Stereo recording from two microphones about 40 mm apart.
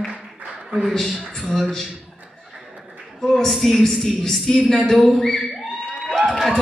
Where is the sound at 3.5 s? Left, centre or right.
Centre.